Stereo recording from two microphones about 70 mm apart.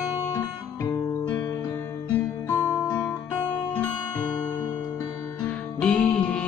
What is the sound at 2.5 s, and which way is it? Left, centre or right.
Music, left.